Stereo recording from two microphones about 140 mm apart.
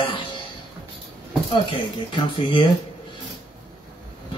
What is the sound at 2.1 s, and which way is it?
Speech, 35° left (ahead or behind).